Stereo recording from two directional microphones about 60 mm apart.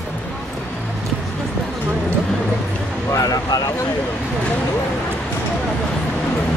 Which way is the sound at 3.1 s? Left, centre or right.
Left.